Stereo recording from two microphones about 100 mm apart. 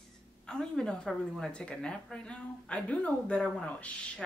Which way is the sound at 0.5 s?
5° left (ahead or behind).